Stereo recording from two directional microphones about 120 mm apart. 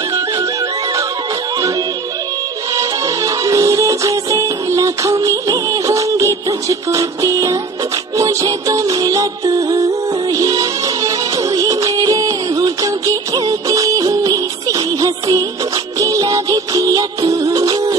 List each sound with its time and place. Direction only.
2.7 s music: 30° right (ahead or behind)